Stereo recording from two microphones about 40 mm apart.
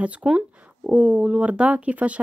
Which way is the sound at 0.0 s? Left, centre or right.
Right.